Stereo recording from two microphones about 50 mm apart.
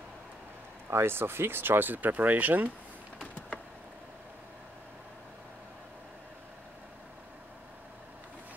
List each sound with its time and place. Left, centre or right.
0.8 s speech: right